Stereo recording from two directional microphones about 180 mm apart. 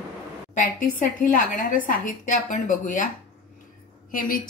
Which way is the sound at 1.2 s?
45° left (ahead or behind).